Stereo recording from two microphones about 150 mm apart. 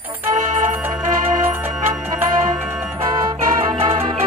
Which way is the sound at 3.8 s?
40° right (ahead or behind).